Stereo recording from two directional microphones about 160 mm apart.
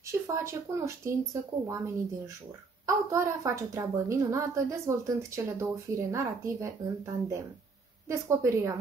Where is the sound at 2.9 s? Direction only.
20° right (ahead or behind).